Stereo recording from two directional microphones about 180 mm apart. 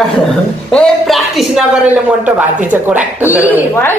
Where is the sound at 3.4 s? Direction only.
10° left (ahead or behind).